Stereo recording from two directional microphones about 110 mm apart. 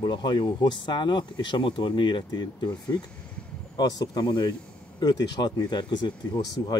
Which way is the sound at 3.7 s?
35° left (ahead or behind).